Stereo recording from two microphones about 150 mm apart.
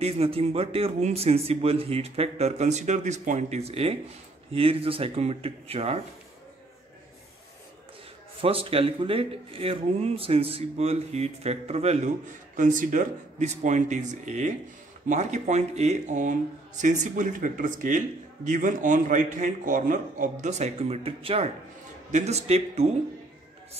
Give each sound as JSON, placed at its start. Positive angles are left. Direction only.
{"t": 0.0, "sound": "a man's voice", "side_deg": -40}
{"t": 8.4, "sound": "a man's voice", "side_deg": -40}
{"t": 12.5, "sound": "a man's voice", "side_deg": -60}